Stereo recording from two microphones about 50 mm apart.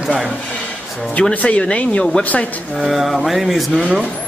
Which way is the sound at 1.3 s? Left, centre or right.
Left.